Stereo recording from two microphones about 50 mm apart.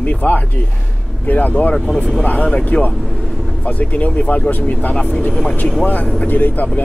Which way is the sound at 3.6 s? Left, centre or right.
Left.